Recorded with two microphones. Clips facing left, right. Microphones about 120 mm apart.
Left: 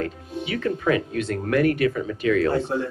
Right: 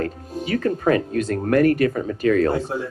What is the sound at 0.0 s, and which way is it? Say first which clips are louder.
Speech: right 2 dB; 40° right (ahead or behind).